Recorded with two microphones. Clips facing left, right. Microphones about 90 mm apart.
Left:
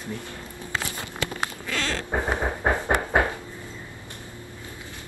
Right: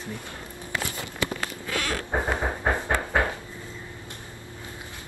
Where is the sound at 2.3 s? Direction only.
20° left (ahead or behind).